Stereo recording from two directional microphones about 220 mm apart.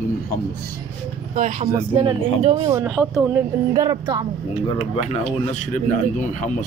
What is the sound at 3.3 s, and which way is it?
Speech, 15° right (ahead or behind).